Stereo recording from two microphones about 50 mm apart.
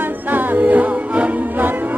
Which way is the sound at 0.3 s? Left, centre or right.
Right.